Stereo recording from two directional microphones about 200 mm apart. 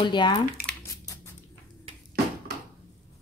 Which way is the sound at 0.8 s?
15° left (ahead or behind).